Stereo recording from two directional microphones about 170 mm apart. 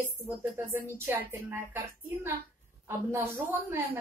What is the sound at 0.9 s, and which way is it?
Speech, 10° right (ahead or behind).